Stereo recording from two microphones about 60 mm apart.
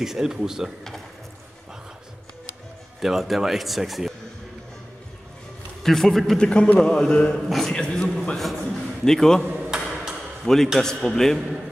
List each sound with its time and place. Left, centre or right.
0.0 s speech: centre
3.0 s speech: centre
5.8 s speech: centre
6.4 s a man's voice: centre
7.3 s a man's voice: centre
9.8 s a sound: centre
10.4 s a man's voice: centre